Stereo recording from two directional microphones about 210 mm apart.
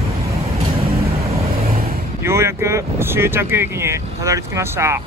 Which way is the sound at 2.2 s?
10° right (ahead or behind).